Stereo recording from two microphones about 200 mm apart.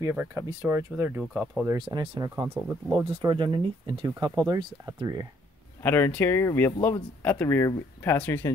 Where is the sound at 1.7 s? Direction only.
20° right (ahead or behind).